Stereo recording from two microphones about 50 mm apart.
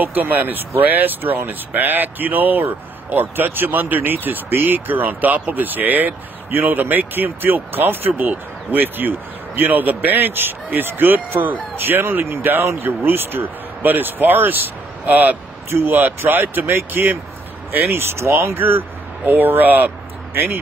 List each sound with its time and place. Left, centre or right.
0.0 s speech: right
12.8 s speech: right
15.7 s speech: right
16.2 s speech: right
18.3 s speech: right
18.6 s speech: right